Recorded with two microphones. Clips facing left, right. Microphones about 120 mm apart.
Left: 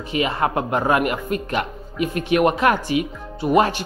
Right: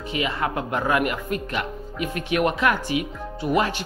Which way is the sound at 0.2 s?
35° left (ahead or behind).